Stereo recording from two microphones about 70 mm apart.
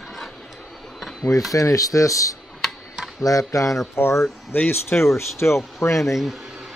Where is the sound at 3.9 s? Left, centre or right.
Left.